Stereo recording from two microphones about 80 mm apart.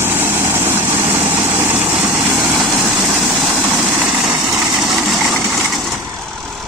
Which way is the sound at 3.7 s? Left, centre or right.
Right.